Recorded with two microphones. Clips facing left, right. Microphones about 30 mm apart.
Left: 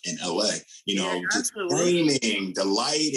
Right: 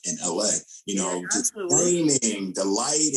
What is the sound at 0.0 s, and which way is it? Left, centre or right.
Speech, left.